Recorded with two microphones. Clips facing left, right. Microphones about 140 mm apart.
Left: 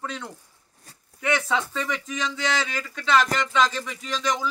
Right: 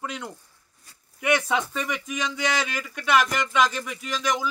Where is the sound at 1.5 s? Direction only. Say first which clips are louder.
Even; 15° right (ahead or behind).